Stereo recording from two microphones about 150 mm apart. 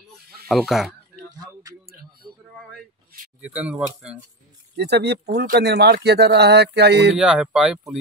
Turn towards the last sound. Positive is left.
turn(degrees=-5)  # may be behind; listen again after turning